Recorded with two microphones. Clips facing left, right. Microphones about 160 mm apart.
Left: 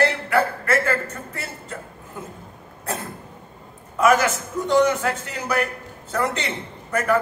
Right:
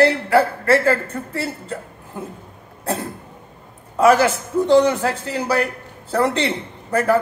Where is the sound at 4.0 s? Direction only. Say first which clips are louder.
Right 4 dB; 35° right (ahead or behind).